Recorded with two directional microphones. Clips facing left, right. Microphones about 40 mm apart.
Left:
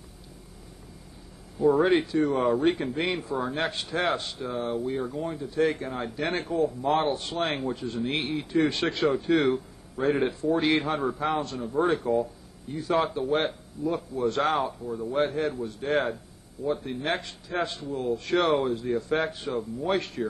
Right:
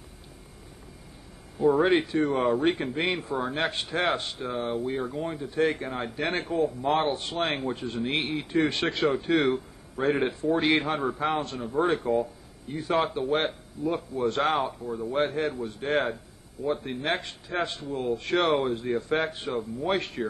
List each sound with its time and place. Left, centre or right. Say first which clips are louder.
1.6 s a man's voice: even; right